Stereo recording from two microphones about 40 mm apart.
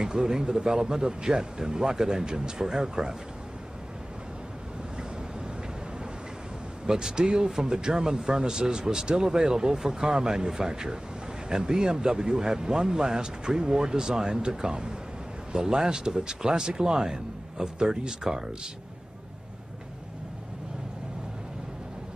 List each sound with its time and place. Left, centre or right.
0.0 s speech: centre
6.9 s speech: centre